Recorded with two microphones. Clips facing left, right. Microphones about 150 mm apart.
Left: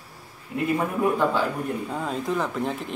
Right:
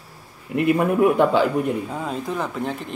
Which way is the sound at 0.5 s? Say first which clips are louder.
Right 6 dB; 70° right (ahead or behind).